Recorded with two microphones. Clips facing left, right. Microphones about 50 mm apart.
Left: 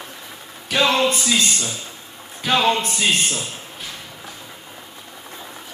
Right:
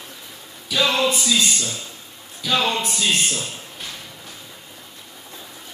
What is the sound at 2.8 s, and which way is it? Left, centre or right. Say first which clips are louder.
Speech: left 1 dB; left.